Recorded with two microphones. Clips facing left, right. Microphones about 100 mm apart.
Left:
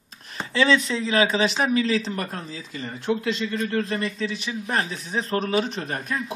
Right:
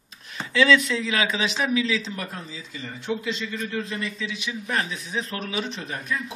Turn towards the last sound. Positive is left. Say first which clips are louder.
# left 2 dB
turn(degrees=50)  # may be behind; listen again after turning